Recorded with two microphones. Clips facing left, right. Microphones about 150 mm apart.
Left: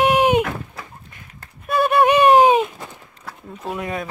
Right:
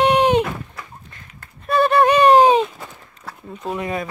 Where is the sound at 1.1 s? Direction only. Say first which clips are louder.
Even; 10° left (ahead or behind).